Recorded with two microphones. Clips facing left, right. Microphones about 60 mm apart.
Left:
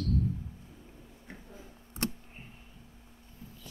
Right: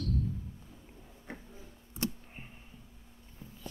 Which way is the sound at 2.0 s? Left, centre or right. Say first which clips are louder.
Left 1 dB; left.